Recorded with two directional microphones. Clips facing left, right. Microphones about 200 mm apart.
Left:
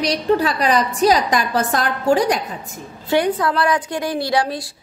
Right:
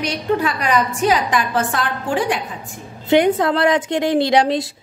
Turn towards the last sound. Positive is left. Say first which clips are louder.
# right 5 dB
turn(degrees=-20)  # may be behind; listen again after turning